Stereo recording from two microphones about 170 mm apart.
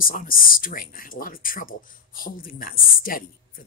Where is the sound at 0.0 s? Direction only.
55° left (ahead or behind).